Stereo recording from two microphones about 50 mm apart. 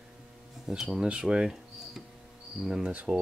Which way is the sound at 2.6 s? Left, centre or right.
Centre.